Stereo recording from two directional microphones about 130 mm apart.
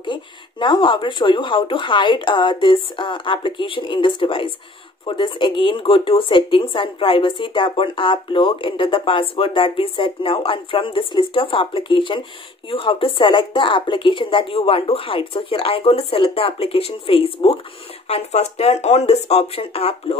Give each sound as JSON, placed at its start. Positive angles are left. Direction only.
{"t": 0.0, "sound": "speech", "side_deg": 35}